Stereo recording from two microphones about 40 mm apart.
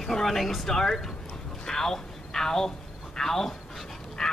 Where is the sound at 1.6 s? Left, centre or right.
Centre.